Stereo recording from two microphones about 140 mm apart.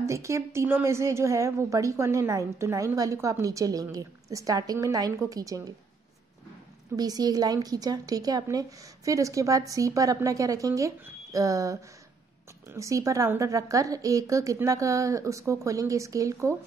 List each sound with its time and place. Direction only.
0.0 s a woman's voice: 20° right (ahead or behind)
7.0 s a woman's voice: 30° right (ahead or behind)